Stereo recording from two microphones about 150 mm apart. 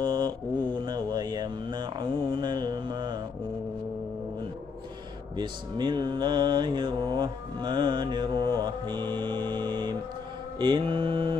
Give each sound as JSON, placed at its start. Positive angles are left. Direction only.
{"t": 0.0, "sound": "mantra", "side_deg": -25}
{"t": 5.4, "sound": "music", "side_deg": -30}
{"t": 10.6, "sound": "mantra", "side_deg": -35}